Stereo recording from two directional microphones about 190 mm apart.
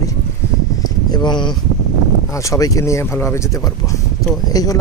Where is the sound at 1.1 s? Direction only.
25° left (ahead or behind).